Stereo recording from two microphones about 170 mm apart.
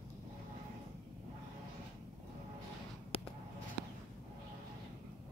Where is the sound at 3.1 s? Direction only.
30° left (ahead or behind).